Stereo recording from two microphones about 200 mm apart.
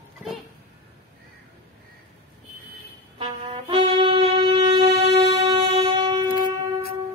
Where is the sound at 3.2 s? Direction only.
25° right (ahead or behind).